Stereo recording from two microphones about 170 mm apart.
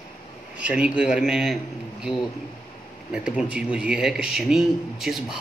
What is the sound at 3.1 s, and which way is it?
Speech, 5° right (ahead or behind).